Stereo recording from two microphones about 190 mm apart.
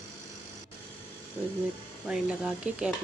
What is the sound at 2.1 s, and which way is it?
Speech, 5° right (ahead or behind).